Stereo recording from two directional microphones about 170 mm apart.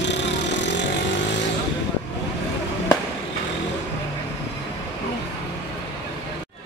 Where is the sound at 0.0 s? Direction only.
90° left.